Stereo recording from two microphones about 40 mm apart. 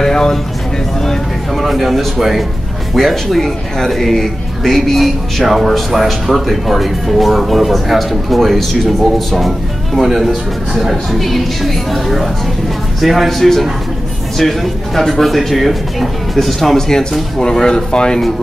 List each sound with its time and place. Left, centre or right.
0.0 s a sound: centre
1.0 s a man's voice: centre
9.9 s a man's voice: centre